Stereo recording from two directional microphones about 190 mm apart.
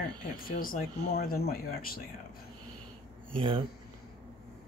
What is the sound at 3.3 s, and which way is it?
Speech, 25° right (ahead or behind).